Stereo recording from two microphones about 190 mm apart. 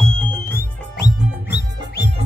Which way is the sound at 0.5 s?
60° left (ahead or behind).